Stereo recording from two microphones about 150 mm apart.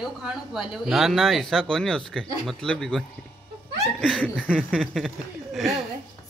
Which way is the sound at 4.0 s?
10° left (ahead or behind).